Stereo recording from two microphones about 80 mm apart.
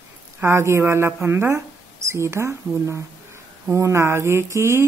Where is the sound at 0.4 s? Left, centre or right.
Right.